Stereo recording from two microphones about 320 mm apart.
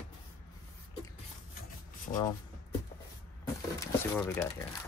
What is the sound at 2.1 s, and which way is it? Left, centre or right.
Speech, centre.